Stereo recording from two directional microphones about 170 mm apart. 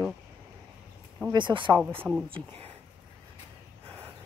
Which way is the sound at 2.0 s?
5° right (ahead or behind).